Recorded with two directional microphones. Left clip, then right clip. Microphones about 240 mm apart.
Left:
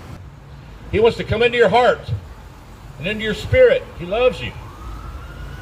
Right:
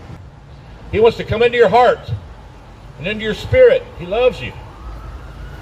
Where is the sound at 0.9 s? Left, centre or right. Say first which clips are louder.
Right 3 dB; centre.